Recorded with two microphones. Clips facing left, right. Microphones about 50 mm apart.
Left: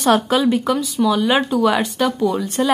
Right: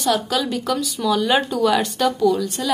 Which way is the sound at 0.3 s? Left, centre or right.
Left.